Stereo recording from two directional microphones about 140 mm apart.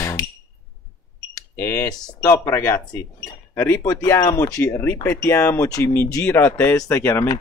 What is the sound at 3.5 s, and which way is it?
Speech, 20° left (ahead or behind).